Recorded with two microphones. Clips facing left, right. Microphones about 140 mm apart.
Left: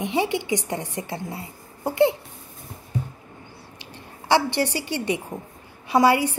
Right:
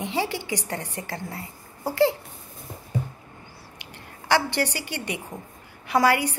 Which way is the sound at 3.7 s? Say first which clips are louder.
Left 2 dB; 25° left (ahead or behind).